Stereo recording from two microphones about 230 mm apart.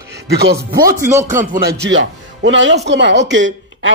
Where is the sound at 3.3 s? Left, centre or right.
Right.